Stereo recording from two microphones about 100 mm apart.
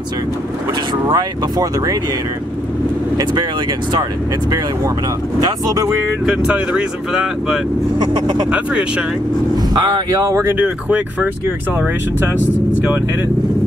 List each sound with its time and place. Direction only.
1.0 s speech: 45° right (ahead or behind)
6.2 s speech: 10° right (ahead or behind)
8.0 s speech: 45° right (ahead or behind)
8.5 s speech: 10° right (ahead or behind)
9.6 s speech: 45° right (ahead or behind)
10.4 s speech: 15° right (ahead or behind)